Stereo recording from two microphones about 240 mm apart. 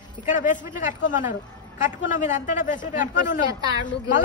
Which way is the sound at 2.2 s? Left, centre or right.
Left.